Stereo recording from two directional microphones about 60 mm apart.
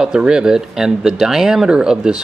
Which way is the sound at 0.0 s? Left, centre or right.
Centre.